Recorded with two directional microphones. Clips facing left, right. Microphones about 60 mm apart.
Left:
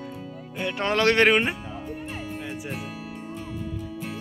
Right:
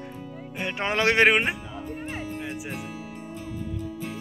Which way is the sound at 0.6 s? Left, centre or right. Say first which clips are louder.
Left 2 dB; right.